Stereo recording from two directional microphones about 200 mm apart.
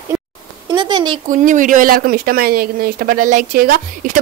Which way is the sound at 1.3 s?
40° right (ahead or behind).